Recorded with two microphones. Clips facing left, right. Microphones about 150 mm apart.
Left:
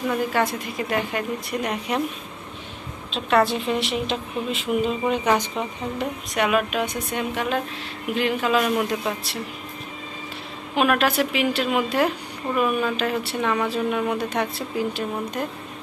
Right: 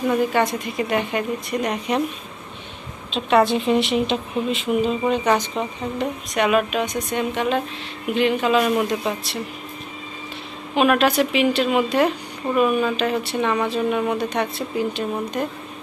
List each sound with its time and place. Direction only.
0.1 s speech: centre (ahead or behind)
3.1 s speech: centre (ahead or behind)
10.8 s speech: 5° left (ahead or behind)